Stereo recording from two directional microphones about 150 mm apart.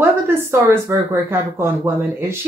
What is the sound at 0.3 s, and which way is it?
Speech, 15° right (ahead or behind).